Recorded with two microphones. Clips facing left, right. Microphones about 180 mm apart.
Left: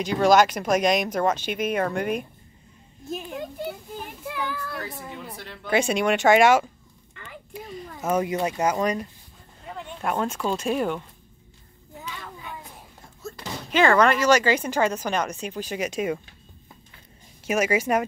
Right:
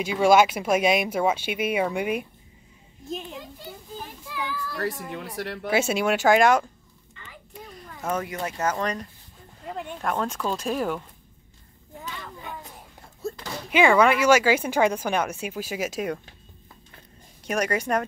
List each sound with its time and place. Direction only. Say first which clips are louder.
0.0 s speech: even; 5° right (ahead or behind)
4.5 s speech: even; 60° left (ahead or behind)
4.7 s speech: right 5 dB; 80° right
5.7 s speech: left 1 dB; 5° right (ahead or behind)
7.7 s a sound: left 4 dB; 5° left (ahead or behind)
8.2 s speech: left 5 dB; 20° left (ahead or behind)
10.0 s speech: left 2 dB; centre (ahead or behind)
13.2 s slam: right 6 dB; 35° right (ahead or behind)
13.7 s speech: even; 10° right (ahead or behind)
17.5 s speech: left 3 dB; 5° left (ahead or behind)